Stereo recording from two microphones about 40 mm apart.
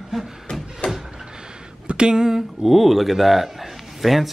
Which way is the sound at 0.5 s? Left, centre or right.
Left.